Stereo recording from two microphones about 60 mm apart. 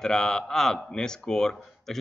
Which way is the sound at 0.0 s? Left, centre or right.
Centre.